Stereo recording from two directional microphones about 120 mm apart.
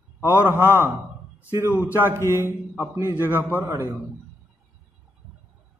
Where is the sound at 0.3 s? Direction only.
15° right (ahead or behind).